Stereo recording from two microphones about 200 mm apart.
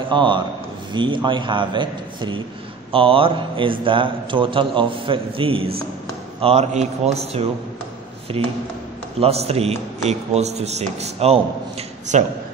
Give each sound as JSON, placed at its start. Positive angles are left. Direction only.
{"t": 0.1, "sound": "a man's voice", "side_deg": -25}